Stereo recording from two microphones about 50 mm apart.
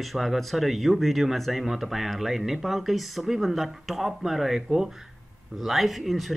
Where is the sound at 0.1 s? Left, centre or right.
Centre.